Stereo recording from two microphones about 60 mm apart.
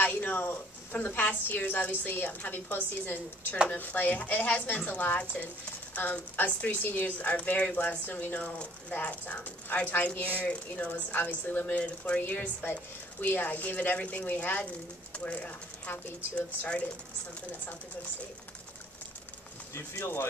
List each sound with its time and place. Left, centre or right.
0.0 s a woman's voice: left
12.2 s a woman's voice: left
19.7 s speech: left